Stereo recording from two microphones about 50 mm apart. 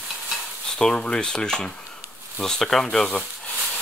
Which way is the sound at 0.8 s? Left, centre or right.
Centre.